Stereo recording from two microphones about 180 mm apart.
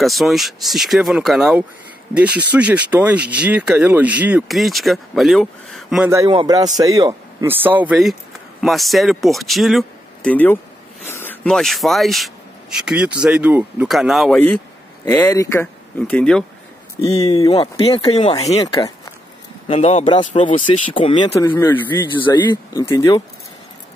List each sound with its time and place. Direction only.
0.0 s a man's voice: centre (ahead or behind)
6.0 s a man's voice: 15° right (ahead or behind)
15.0 s speech: 15° left (ahead or behind)
17.0 s speech: 35° left (ahead or behind)
18.6 s speech: 20° left (ahead or behind)
19.7 s speech: 35° left (ahead or behind)
20.9 s speech: 30° left (ahead or behind)
21.4 s speech: 15° left (ahead or behind)
22.1 s speech: 25° left (ahead or behind)